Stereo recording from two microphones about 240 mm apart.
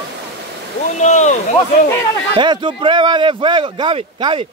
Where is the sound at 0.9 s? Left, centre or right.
Left.